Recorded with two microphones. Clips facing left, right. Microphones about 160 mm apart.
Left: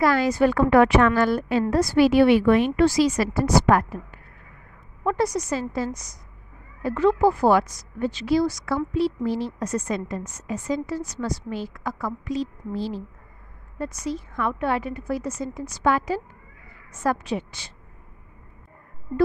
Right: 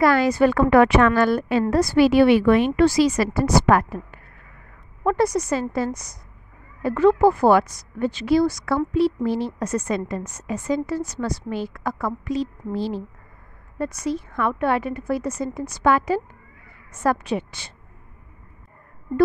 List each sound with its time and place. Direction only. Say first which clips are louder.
0.0 s a woman's voice: right 2 dB; 65° right (ahead or behind); by 4.2 s 80° right
5.0 s speech: right 3 dB; 60° right (ahead or behind)